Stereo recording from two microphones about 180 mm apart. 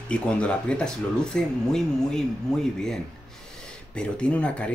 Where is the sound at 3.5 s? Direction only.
5° left (ahead or behind).